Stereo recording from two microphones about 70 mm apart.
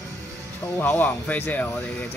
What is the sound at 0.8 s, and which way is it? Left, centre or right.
Speech, left.